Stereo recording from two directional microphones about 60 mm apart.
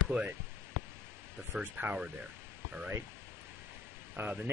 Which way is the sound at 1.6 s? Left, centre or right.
Right.